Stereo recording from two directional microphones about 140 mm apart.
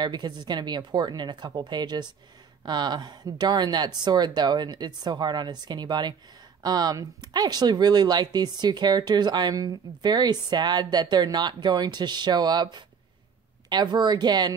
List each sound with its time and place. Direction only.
0.0 s speech: 30° right (ahead or behind)